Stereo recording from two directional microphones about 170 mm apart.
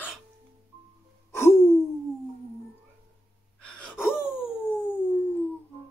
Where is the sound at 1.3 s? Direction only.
15° left (ahead or behind).